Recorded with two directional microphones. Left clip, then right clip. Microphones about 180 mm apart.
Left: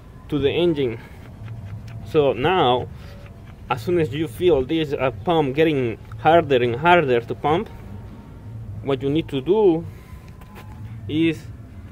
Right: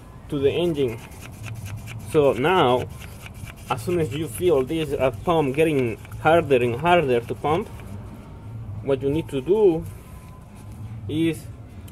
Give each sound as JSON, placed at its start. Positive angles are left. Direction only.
{"t": 0.3, "sound": "speech", "side_deg": 10}
{"t": 2.4, "sound": "speech", "side_deg": -5}
{"t": 3.6, "sound": "speech", "side_deg": 10}
{"t": 8.8, "sound": "speech", "side_deg": 10}
{"t": 11.1, "sound": "speech", "side_deg": 10}